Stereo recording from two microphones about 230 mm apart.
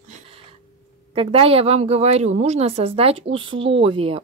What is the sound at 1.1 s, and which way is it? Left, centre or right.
Speech, right.